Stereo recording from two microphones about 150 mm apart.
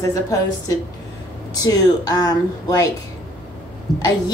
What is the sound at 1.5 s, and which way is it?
Speech, 25° left (ahead or behind).